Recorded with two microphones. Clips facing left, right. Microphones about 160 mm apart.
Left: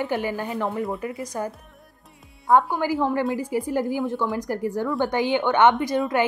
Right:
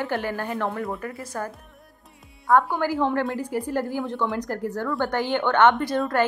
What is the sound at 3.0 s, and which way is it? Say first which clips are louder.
Speech: left 1 dB; 5° left (ahead or behind).